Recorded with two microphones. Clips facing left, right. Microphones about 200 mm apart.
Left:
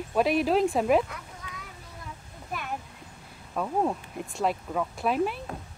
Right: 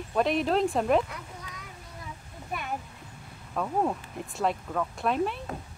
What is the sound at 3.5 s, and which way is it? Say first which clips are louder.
Speech: left 1 dB; 5° left (ahead or behind).